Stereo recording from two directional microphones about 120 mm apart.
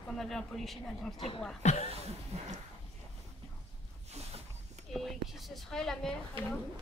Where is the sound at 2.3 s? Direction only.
60° right (ahead or behind).